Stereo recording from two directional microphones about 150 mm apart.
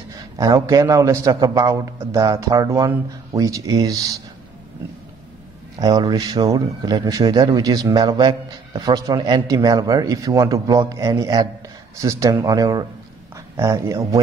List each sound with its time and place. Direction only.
0.1 s speech: 20° right (ahead or behind)
5.8 s speech: 25° right (ahead or behind)